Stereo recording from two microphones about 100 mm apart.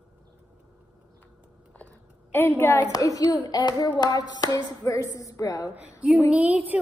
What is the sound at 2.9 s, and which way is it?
Speech, 35° left (ahead or behind).